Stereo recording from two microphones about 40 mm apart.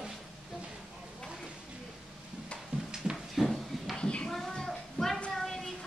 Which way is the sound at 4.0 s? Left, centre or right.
Left.